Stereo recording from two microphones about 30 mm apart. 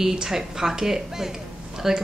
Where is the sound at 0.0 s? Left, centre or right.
Centre.